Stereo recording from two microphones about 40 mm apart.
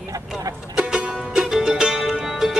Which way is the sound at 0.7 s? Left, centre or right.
Centre.